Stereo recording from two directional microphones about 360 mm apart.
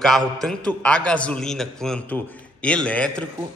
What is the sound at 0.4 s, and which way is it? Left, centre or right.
A man's voice, centre.